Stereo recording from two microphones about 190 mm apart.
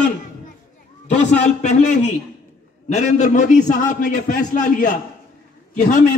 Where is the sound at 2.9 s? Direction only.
40° left (ahead or behind).